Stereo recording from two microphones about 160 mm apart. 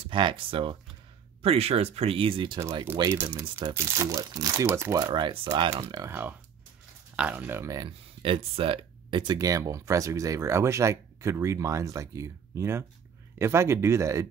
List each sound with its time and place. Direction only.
0.0 s speech: 30° right (ahead or behind)
3.0 s speech: 15° right (ahead or behind)
3.4 s speech: 30° right (ahead or behind)
3.7 s speech: 20° right (ahead or behind)
7.2 s speech: 10° right (ahead or behind)
8.2 s speech: 35° right (ahead or behind)
9.3 s speech: 20° right (ahead or behind)